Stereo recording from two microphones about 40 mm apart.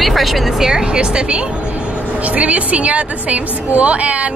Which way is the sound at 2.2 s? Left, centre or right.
Right.